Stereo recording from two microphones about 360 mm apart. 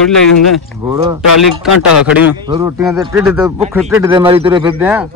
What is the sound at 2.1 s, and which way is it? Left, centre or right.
A man's voice, centre.